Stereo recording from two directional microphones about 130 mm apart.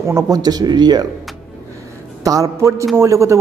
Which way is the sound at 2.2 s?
25° right (ahead or behind).